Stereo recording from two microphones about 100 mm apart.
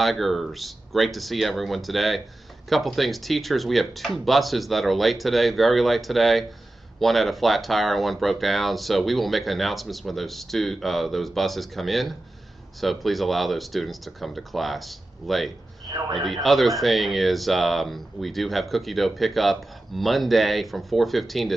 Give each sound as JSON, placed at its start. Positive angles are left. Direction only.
{"t": 0.0, "sound": "speech", "side_deg": 0}